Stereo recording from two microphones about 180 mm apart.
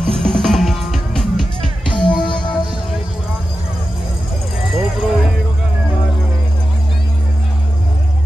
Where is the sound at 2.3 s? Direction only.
25° left (ahead or behind).